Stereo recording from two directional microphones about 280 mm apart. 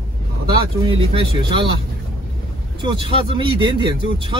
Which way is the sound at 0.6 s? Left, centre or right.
Centre.